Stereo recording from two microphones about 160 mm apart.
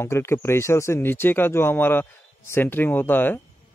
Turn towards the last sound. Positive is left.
turn(degrees=10)  # may be behind; listen again after turning